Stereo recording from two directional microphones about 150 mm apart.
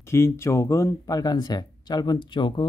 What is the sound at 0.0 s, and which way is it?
Speech, 20° left (ahead or behind).